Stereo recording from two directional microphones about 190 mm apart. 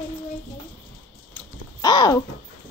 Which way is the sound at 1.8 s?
20° left (ahead or behind).